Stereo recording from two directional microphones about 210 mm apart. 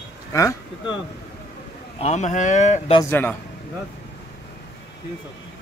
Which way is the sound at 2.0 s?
30° left (ahead or behind).